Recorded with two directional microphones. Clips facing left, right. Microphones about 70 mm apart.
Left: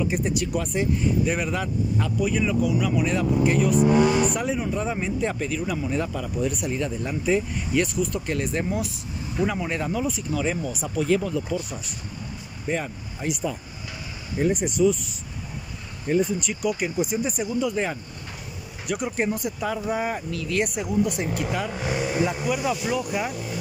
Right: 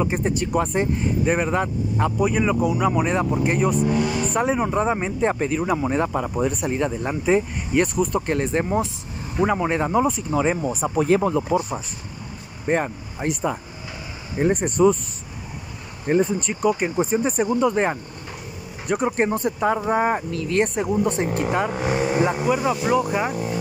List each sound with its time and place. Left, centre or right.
0.0 s speech: right
16.1 s speech: right